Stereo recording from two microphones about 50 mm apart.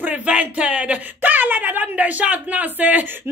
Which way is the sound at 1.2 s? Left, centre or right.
Right.